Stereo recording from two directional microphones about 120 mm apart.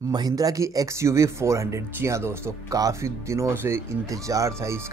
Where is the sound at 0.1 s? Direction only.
30° right (ahead or behind).